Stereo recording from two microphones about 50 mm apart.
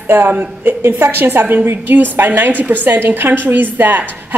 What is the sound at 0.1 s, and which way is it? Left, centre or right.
Speech, right.